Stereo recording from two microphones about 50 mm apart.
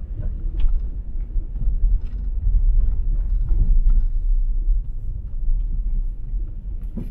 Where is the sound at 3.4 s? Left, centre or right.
Centre.